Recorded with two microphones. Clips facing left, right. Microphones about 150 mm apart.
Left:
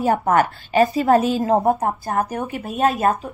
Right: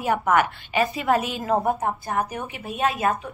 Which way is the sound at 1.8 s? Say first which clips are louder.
Left 4 dB; 50° left (ahead or behind).